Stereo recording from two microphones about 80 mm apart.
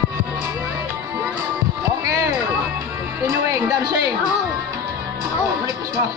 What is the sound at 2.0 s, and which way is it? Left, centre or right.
Music, right.